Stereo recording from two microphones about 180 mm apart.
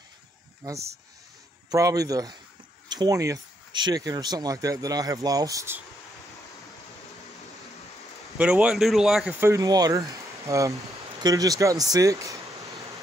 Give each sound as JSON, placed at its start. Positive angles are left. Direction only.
{"t": 1.7, "sound": "speech", "side_deg": -20}
{"t": 8.4, "sound": "speech", "side_deg": -5}